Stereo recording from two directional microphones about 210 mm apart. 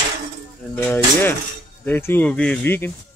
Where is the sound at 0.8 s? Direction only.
10° left (ahead or behind).